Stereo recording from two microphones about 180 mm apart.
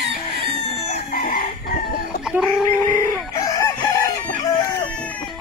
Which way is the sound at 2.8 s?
15° left (ahead or behind).